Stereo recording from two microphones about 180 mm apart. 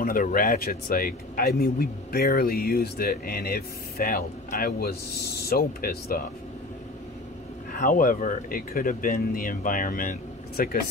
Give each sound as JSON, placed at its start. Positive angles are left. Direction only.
{"t": 0.0, "sound": "speech", "side_deg": 50}
{"t": 7.7, "sound": "speech", "side_deg": 50}